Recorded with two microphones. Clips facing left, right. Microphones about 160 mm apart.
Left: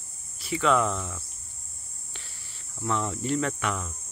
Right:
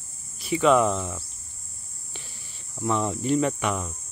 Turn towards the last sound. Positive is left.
turn(degrees=-15)  # may be behind; listen again after turning